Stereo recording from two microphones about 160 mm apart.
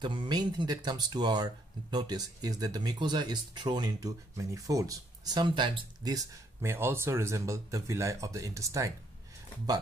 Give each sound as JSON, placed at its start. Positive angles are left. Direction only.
{"t": 0.0, "sound": "speech", "side_deg": -30}